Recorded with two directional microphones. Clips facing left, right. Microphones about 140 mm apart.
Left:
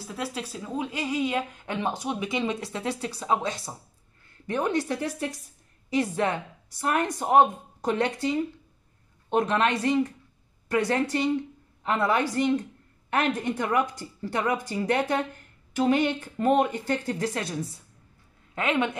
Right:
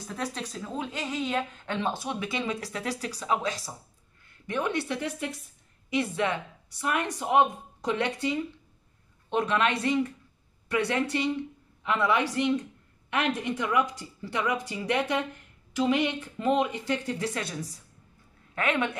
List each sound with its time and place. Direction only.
0.0 s a woman's voice: 5° left (ahead or behind); by 3.7 s 25° left (ahead or behind)
4.5 s a woman's voice: 40° left (ahead or behind)
6.8 s a woman's voice: 40° left (ahead or behind)
18.5 s a woman's voice: 20° left (ahead or behind)